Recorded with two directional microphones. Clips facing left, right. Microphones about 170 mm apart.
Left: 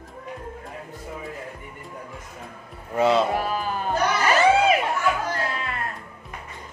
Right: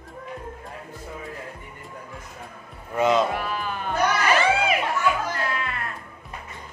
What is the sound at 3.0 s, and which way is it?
Speech, 30° left (ahead or behind).